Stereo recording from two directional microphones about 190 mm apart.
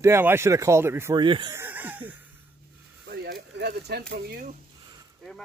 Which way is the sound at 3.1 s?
55° right (ahead or behind).